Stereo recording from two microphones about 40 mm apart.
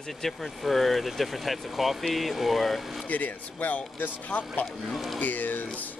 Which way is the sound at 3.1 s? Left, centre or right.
Left.